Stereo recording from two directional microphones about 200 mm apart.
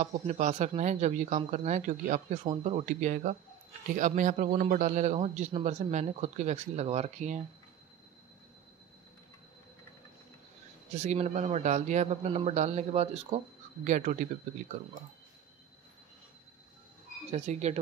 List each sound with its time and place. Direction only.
0.0 s a man's voice: 35° right (ahead or behind)
11.0 s a man's voice: 35° right (ahead or behind)
17.3 s a man's voice: 35° right (ahead or behind)